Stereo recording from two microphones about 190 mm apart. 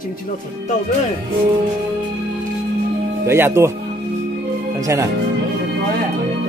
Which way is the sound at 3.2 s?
10° right (ahead or behind).